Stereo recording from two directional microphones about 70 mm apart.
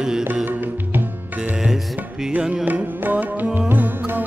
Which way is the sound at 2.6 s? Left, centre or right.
Right.